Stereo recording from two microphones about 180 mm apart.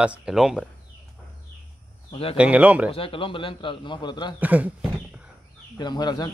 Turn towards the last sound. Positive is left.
turn(degrees=25)  # may be behind; listen again after turning